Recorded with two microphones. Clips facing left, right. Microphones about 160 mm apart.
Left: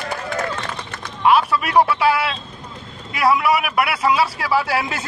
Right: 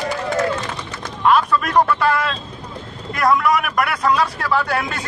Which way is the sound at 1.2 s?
5° left (ahead or behind).